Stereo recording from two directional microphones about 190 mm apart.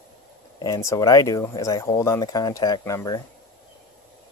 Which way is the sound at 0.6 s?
15° left (ahead or behind).